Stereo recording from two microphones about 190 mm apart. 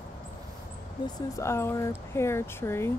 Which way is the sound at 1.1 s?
15° left (ahead or behind).